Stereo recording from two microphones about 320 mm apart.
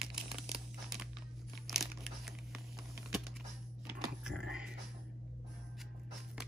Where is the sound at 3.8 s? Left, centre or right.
Centre.